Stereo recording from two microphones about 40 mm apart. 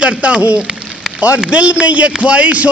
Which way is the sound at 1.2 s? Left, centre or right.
Right.